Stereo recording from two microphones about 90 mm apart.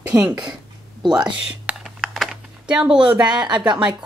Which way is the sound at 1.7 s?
15° right (ahead or behind).